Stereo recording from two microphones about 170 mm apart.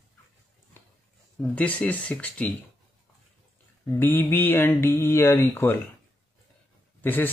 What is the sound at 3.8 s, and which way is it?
Speech, 15° left (ahead or behind).